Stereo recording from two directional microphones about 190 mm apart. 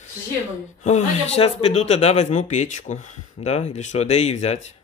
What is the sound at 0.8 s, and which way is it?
Speech, 35° left (ahead or behind).